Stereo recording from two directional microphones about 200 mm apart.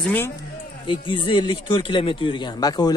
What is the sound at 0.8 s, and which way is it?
Speech, 25° left (ahead or behind).